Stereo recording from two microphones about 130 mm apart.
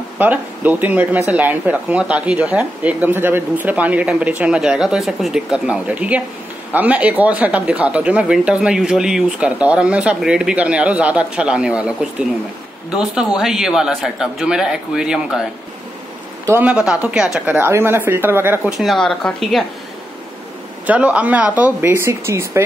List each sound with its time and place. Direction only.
0.2 s a man's voice: 10° right (ahead or behind)
16.5 s speech: 10° right (ahead or behind)
17.6 s speech: 20° right (ahead or behind)
18.7 s a man's voice: centre (ahead or behind)
20.8 s speech: 10° right (ahead or behind)